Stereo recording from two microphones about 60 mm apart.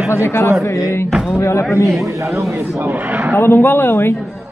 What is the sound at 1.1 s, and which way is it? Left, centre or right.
Speech, centre.